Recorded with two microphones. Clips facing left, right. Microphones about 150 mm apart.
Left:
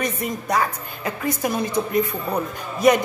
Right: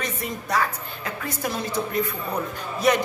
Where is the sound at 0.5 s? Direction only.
15° left (ahead or behind).